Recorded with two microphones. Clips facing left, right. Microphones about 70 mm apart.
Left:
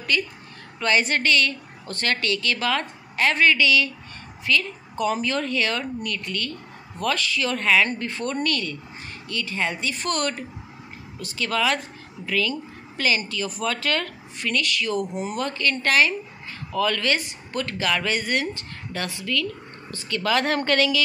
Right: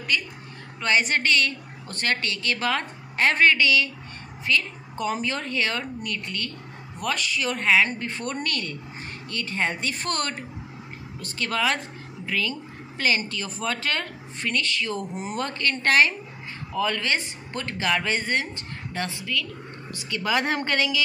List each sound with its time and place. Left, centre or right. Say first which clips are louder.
0.7 s a woman's voice: left 1 dB; right
8.4 s speech: left 4 dB; right
16.7 s a woman's voice: left 2 dB; right